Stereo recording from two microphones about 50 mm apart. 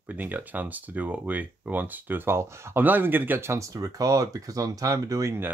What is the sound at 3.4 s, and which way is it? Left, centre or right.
Speech, right.